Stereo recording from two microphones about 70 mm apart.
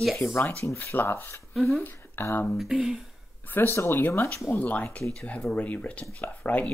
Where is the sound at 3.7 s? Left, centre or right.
Left.